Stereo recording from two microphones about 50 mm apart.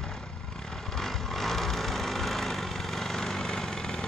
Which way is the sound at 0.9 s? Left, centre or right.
Centre.